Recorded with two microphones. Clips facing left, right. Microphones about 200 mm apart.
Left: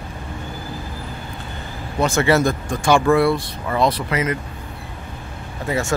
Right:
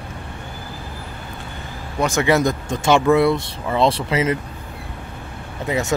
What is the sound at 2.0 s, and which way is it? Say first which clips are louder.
Speech: even; 15° right (ahead or behind).